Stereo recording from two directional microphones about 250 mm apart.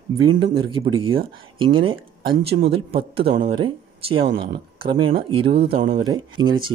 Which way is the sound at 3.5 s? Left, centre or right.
Right.